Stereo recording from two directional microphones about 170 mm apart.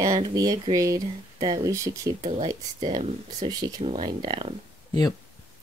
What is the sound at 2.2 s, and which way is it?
Speech, 35° right (ahead or behind).